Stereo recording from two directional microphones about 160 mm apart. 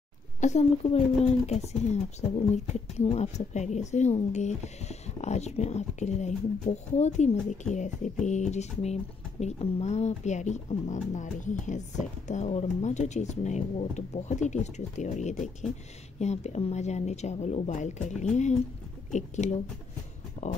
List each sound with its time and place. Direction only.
0.4 s speech: 45° left (ahead or behind)